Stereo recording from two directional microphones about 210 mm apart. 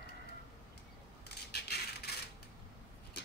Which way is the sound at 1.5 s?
50° left (ahead or behind).